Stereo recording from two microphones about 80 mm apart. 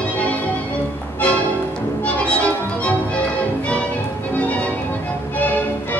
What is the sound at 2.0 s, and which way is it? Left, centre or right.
Music, centre.